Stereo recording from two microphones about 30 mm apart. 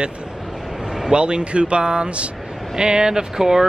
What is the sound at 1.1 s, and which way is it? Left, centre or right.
Speech, right.